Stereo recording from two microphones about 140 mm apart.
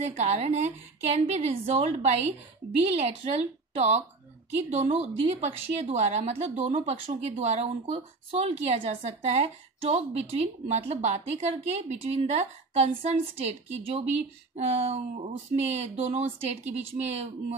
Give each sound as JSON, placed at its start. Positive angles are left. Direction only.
{"t": 0.0, "sound": "speech", "side_deg": -50}
{"t": 5.0, "sound": "speech", "side_deg": -50}